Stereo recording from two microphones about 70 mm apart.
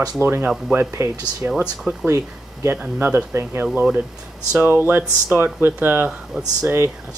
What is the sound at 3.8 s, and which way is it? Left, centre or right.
Speech, right.